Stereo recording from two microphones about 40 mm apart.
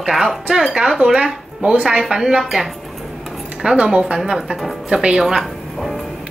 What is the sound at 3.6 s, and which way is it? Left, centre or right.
Speech, centre.